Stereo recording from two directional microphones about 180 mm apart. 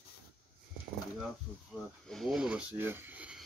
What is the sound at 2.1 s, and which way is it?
Speech, centre (ahead or behind).